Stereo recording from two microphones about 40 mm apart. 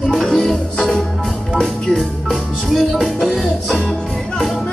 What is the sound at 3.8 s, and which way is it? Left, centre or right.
Music, left.